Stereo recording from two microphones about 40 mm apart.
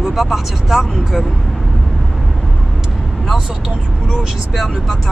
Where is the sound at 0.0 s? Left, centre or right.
Centre.